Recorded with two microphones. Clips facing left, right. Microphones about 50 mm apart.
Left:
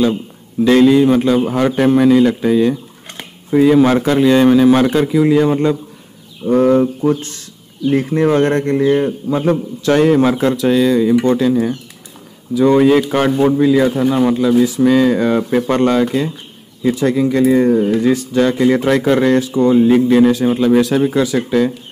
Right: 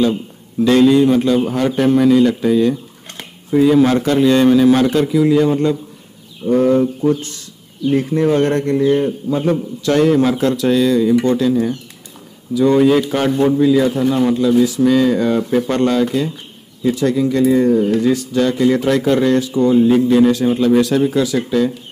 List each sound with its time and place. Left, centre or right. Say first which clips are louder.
0.7 s a man's voice: left 1 dB; centre
10.3 s a man's voice: left 1 dB; centre; by 20.0 s left
20.2 s a man's voice: left 1 dB; centre; by 21.7 s left